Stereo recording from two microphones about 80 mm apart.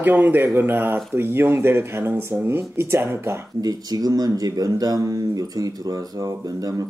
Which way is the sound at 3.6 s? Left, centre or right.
Right.